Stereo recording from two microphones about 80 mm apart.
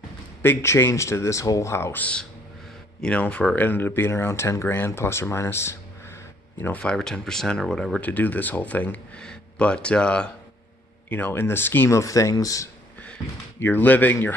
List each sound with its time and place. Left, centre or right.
0.4 s speech: left
3.0 s speech: centre; by 5.8 s left
6.8 s speech: centre
8.0 s speech: left
11.1 s speech: left
11.9 s speech: left
13.6 s speech: left